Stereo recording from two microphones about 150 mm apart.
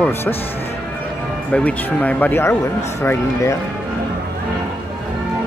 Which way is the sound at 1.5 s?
10° left (ahead or behind).